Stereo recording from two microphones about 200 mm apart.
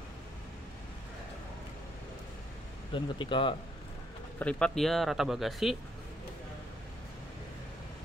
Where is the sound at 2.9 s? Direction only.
25° left (ahead or behind).